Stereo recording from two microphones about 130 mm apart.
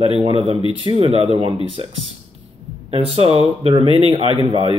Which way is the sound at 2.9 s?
45° right (ahead or behind).